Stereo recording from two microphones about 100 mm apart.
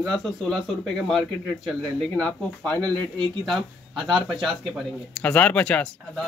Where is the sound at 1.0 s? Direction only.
Centre (ahead or behind).